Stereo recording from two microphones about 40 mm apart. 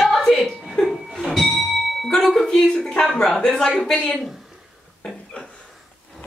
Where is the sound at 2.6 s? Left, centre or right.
Left.